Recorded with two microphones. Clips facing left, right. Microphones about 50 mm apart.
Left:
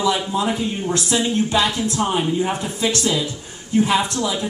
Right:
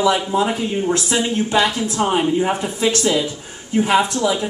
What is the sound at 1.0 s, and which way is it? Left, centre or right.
Speech, right.